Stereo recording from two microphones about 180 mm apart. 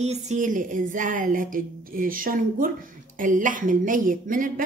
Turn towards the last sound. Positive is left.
turn(degrees=-50)  # may be behind; listen again after turning